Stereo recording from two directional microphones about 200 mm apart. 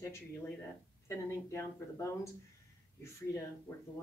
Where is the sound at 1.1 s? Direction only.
15° left (ahead or behind).